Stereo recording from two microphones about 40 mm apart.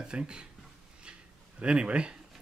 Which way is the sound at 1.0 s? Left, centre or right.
Right.